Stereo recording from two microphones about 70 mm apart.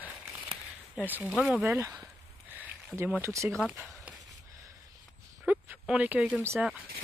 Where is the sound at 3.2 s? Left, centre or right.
Right.